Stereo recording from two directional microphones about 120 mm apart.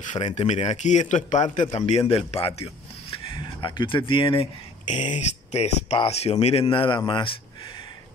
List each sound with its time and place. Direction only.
0.3 s a man's voice: 65° left (ahead or behind)
3.3 s speech: 40° left (ahead or behind)
5.1 s speech: 65° left (ahead or behind); by 7.3 s 45° left (ahead or behind)